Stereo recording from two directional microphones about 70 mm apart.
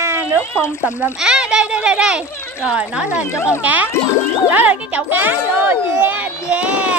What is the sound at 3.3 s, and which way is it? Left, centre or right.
Speech, left.